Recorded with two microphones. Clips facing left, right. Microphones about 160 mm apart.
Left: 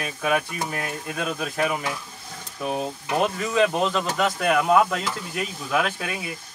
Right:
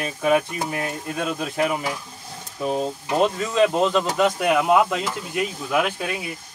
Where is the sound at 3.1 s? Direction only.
20° right (ahead or behind).